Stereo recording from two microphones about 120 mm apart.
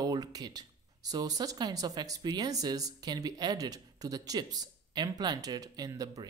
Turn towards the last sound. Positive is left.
turn(degrees=-30)  # may be behind; listen again after turning